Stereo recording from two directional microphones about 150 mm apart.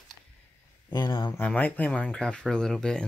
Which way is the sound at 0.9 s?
30° left (ahead or behind).